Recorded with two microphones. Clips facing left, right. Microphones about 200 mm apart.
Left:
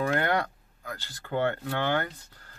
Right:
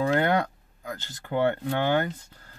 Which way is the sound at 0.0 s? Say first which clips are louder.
Right 3 dB; 20° right (ahead or behind).